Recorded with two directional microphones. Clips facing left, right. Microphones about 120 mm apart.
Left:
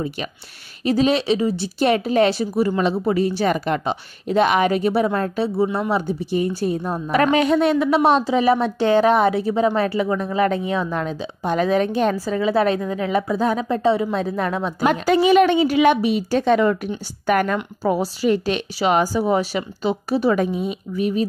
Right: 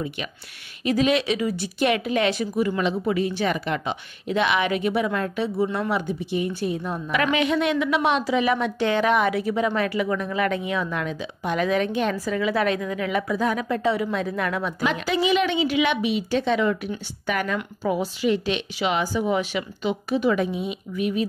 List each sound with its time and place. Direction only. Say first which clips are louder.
0.8 s speech: left 3 dB; 35° left (ahead or behind)
14.9 s a woman's voice: left 7 dB; 45° left (ahead or behind)